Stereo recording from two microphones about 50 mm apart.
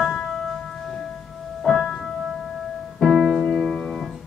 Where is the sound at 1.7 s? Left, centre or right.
Centre.